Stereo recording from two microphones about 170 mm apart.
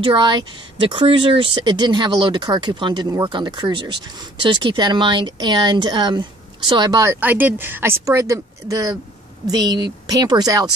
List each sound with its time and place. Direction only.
0.0 s speech: 30° right (ahead or behind)